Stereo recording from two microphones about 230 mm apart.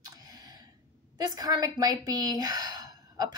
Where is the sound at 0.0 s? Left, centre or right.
Centre.